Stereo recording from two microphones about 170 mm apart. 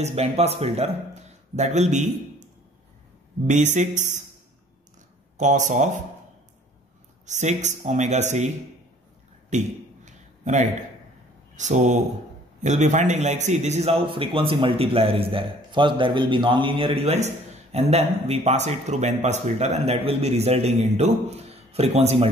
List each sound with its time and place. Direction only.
0.0 s speech: 40° right (ahead or behind)
3.4 s speech: 45° right (ahead or behind)
5.4 s speech: 45° right (ahead or behind)
7.2 s speech: 45° right (ahead or behind)
9.5 s a sound: 45° right (ahead or behind)
11.5 s a man's voice: 45° right (ahead or behind)